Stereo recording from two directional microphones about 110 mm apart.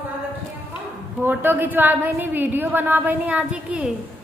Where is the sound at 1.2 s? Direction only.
20° right (ahead or behind).